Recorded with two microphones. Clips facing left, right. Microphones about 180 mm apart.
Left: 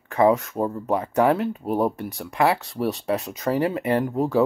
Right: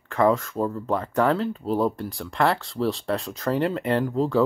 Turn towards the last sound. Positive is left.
turn(degrees=20)  # may be behind; listen again after turning